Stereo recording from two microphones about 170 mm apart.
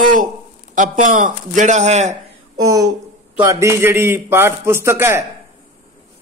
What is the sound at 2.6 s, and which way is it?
A man's voice, 20° right (ahead or behind).